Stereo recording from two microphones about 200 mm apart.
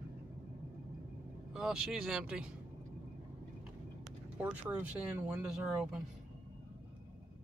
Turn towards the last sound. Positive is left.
turn(degrees=-5)  # may be behind; listen again after turning